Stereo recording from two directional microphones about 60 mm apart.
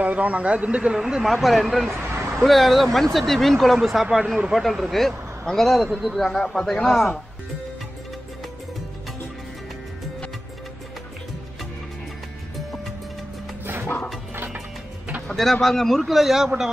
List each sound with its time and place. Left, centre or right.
0.0 s a man's voice: right; by 1.9 s centre
1.9 s vehicle: right
2.4 s speech: centre
5.9 s speech: centre
14.3 s music: right
15.2 s speech: centre